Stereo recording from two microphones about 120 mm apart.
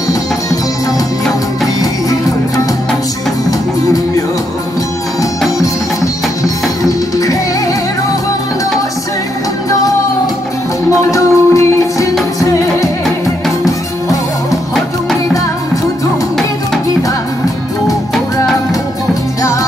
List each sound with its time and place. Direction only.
1.8 s music: 30° left (ahead or behind)
6.4 s music: 30° left (ahead or behind)
11.0 s music: 25° left (ahead or behind)